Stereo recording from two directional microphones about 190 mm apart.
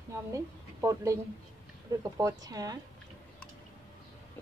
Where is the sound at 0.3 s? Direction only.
15° right (ahead or behind).